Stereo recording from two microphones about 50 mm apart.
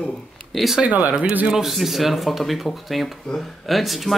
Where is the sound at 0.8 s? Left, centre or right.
Right.